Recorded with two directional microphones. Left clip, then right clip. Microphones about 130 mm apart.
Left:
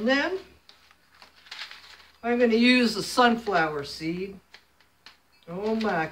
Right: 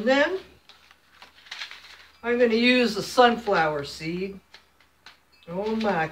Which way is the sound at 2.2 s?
50° left (ahead or behind).